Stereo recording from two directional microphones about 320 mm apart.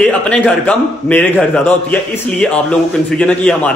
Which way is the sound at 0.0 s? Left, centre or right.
Centre.